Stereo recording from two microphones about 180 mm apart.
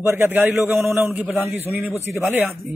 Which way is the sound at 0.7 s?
Centre (ahead or behind).